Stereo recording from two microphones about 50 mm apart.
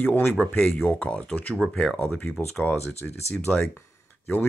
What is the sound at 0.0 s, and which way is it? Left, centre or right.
Speech, left.